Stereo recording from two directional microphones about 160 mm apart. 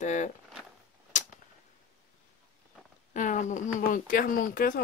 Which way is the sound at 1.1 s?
50° left (ahead or behind).